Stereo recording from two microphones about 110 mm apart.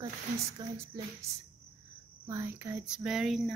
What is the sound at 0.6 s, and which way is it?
Speech, 40° right (ahead or behind).